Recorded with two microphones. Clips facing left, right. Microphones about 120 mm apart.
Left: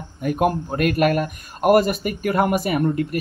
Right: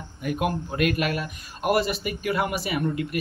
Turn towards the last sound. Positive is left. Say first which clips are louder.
# left 5 dB
turn(degrees=45)  # may be behind; listen again after turning